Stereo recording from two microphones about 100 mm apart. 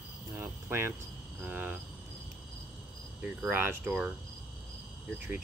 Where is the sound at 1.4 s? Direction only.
15° right (ahead or behind).